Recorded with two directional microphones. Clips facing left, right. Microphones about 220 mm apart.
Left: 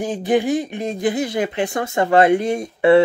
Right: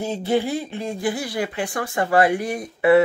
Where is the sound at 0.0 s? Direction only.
15° left (ahead or behind).